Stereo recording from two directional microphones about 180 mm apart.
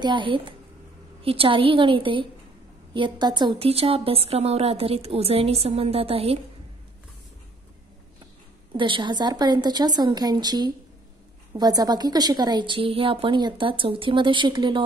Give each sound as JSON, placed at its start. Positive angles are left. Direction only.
{"t": 0.0, "sound": "a woman's voice", "side_deg": -25}
{"t": 8.7, "sound": "a woman's voice", "side_deg": -25}